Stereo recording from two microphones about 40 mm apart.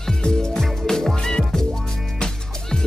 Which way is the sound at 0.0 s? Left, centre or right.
Centre.